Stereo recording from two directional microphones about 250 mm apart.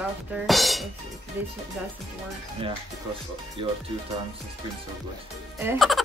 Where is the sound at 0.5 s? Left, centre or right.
Centre.